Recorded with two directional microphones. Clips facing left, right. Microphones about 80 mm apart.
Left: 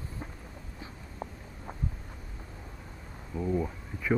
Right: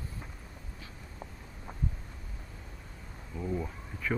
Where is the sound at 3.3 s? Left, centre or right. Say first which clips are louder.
Left 5 dB; centre.